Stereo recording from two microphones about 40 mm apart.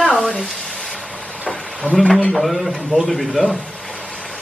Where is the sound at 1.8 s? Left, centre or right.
Right.